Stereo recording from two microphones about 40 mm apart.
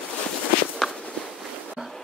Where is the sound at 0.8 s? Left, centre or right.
Centre.